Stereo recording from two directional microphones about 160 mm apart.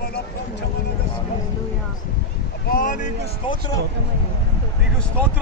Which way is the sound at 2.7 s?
55° left (ahead or behind).